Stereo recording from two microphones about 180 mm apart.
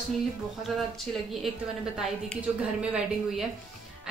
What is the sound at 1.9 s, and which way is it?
A woman's voice, 5° right (ahead or behind).